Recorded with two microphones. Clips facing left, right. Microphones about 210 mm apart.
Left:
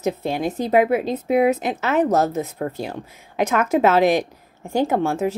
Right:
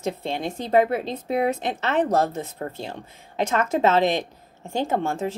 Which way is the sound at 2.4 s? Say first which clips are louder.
Left 6 dB; 25° right (ahead or behind).